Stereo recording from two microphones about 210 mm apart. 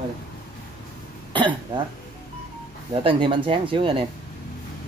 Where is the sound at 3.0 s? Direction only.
25° right (ahead or behind).